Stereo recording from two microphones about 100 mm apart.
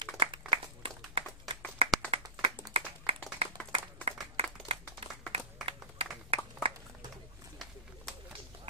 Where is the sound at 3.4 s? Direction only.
75° right (ahead or behind).